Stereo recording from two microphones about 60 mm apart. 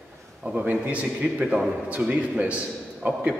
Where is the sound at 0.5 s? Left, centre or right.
Right.